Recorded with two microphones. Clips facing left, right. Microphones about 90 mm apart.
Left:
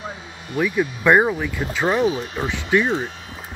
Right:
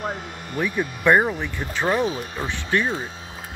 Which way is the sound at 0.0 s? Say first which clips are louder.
Right 4 dB; 55° right (ahead or behind).